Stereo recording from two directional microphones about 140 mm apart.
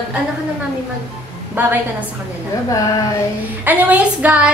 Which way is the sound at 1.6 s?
15° right (ahead or behind).